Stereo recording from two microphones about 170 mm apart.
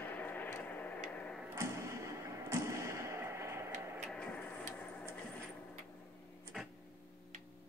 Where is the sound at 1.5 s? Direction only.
15° right (ahead or behind).